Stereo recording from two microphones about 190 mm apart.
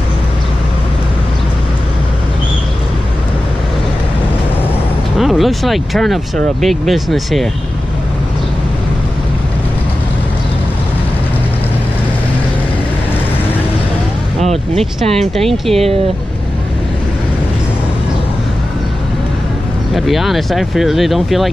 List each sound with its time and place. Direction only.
5.1 s speech: centre (ahead or behind)
14.4 s a sound: 35° right (ahead or behind)
15.1 s speech: centre (ahead or behind)
19.9 s speech: centre (ahead or behind)